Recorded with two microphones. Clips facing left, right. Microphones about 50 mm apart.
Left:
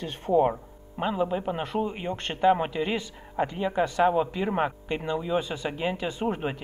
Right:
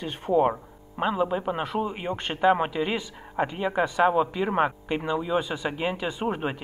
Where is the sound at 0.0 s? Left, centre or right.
Centre.